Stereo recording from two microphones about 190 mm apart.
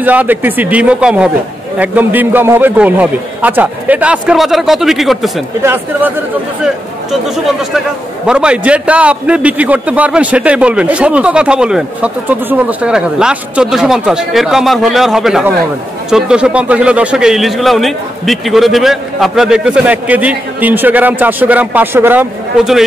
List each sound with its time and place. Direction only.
0.0 s a man's voice: 10° right (ahead or behind)
5.6 s a man's voice: 10° right (ahead or behind)
8.3 s a man's voice: 5° right (ahead or behind)